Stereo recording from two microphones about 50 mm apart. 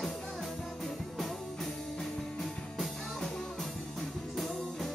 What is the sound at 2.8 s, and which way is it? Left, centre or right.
Music, centre.